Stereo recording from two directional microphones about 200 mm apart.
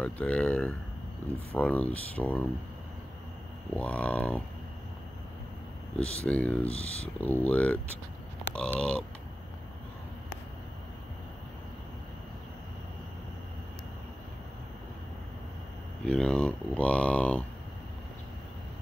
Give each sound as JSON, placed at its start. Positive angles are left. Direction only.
{"t": 0.0, "sound": "speech", "side_deg": 5}
{"t": 3.7, "sound": "speech", "side_deg": 5}
{"t": 6.2, "sound": "speech", "side_deg": 5}
{"t": 6.6, "sound": "speech", "side_deg": 30}
{"t": 7.2, "sound": "speech", "side_deg": 10}
{"t": 16.1, "sound": "speech", "side_deg": 5}